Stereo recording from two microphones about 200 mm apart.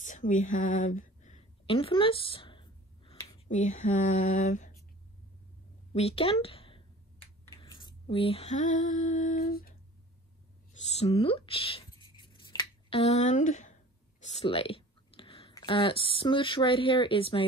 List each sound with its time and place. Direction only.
0.0 s a sound: 40° left (ahead or behind)
3.4 s speech: 35° left (ahead or behind)
5.9 s speech: 30° left (ahead or behind)
7.6 s female singing: 20° left (ahead or behind); by 9.8 s 50° left (ahead or behind)
10.8 s a sound: 30° left (ahead or behind)
14.2 s speech: 30° left (ahead or behind)